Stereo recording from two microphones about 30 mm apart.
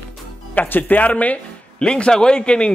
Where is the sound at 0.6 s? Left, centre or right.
Left.